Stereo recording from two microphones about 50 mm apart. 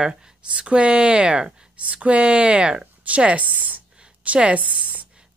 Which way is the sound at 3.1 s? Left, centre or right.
Right.